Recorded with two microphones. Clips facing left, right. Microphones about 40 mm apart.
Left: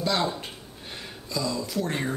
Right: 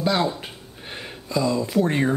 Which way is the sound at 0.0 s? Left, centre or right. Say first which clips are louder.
Right 4 dB; centre.